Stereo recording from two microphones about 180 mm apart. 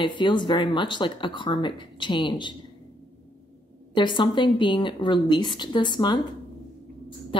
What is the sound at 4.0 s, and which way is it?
A woman's voice, 25° left (ahead or behind).